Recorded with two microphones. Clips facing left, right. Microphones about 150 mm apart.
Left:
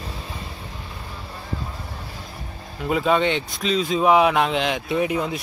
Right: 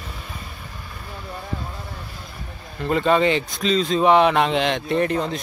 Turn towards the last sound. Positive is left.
turn(degrees=10)  # may be behind; listen again after turning